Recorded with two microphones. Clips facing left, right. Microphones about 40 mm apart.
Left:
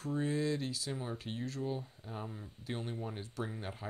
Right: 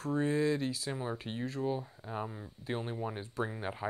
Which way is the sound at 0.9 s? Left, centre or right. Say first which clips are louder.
Right 3 dB; centre.